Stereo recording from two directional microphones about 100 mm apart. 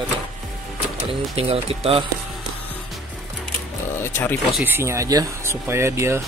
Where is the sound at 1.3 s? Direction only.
75° right (ahead or behind).